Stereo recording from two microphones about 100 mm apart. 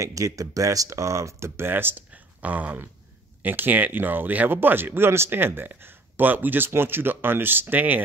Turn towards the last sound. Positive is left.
turn(degrees=-20)  # may be behind; listen again after turning